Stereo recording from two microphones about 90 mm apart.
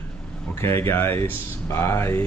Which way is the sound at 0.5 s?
30° left (ahead or behind).